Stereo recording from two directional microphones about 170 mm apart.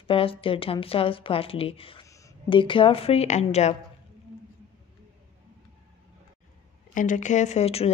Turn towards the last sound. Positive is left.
turn(degrees=35)  # may be behind; listen again after turning